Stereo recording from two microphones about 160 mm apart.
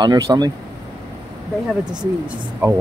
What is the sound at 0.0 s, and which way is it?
Speech, 25° right (ahead or behind).